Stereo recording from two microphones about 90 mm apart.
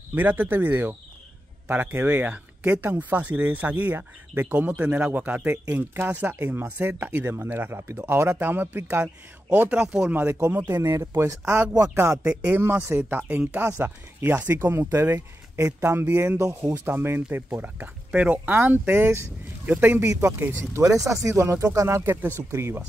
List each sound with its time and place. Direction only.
0.1 s speech: 20° right (ahead or behind)
10.7 s speech: 35° right (ahead or behind)
12.2 s speech: 10° right (ahead or behind)
12.5 s speech: 25° right (ahead or behind)
16.3 s speech: 40° right (ahead or behind)
16.8 s speech: 25° right (ahead or behind)